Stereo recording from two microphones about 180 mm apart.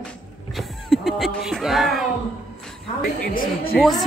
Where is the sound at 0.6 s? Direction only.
Centre (ahead or behind).